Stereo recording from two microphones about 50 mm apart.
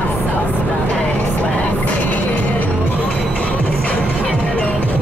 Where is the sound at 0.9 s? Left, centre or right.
Left.